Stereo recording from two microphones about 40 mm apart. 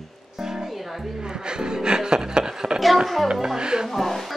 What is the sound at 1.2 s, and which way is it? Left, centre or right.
Speech, centre.